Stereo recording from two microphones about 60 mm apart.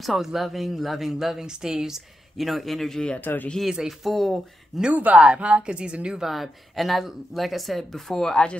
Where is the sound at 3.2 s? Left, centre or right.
Left.